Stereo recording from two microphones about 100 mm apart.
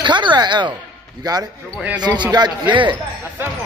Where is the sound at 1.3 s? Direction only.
45° right (ahead or behind).